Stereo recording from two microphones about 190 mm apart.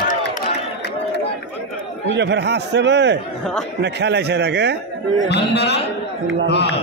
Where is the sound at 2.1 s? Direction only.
65° right (ahead or behind).